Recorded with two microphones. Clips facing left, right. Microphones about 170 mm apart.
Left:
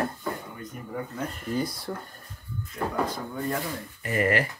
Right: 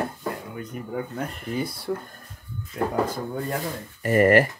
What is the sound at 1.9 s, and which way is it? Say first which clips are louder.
Speech: right 6 dB; 5° right (ahead or behind).